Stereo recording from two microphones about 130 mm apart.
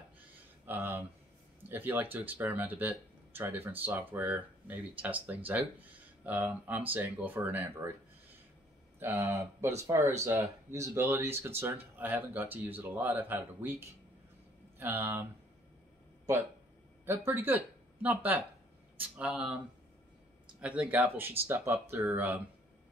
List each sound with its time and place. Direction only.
0.7 s a sound: 15° right (ahead or behind)
1.7 s speech: 15° right (ahead or behind)
9.0 s speech: 20° right (ahead or behind)
17.0 s speech: 15° right (ahead or behind)
20.6 s speech: 10° right (ahead or behind)